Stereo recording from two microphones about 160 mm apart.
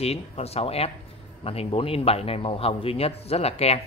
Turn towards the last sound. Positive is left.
turn(degrees=40)  # may be behind; listen again after turning